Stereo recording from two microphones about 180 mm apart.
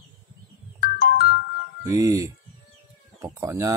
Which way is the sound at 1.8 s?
20° right (ahead or behind).